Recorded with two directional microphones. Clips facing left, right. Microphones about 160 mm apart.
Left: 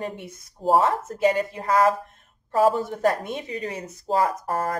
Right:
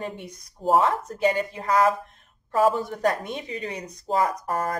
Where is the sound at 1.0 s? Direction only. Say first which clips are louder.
Left 2 dB; 35° left (ahead or behind).